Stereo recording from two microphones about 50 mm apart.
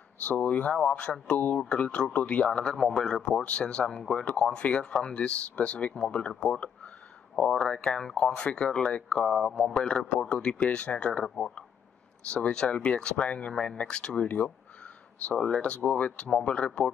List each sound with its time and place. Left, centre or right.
0.2 s speech: left; by 3.3 s centre
3.3 s speech: left
7.5 s speech: centre
11.2 s speech: centre
12.3 s speech: left
14.2 s speech: left